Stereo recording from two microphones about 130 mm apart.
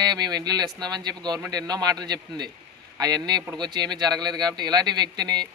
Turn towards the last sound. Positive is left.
turn(degrees=-30)  # may be behind; listen again after turning